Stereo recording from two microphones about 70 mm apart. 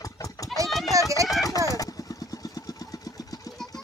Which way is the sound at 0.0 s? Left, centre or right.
Left.